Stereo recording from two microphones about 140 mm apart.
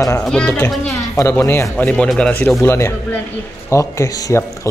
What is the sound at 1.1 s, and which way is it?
Speech, 20° left (ahead or behind).